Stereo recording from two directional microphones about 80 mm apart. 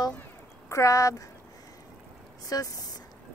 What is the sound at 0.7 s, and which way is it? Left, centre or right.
Speech, left.